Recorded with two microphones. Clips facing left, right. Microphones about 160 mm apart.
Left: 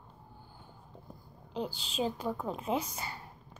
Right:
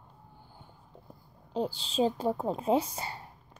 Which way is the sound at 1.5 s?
30° right (ahead or behind).